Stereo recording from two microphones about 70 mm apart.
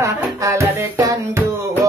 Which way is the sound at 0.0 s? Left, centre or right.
Right.